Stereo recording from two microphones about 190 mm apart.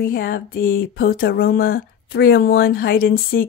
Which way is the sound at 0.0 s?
50° left (ahead or behind).